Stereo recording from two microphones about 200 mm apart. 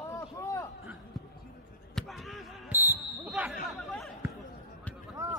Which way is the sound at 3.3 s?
5° right (ahead or behind).